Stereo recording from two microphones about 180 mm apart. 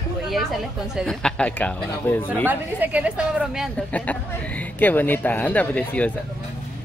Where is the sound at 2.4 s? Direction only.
10° right (ahead or behind).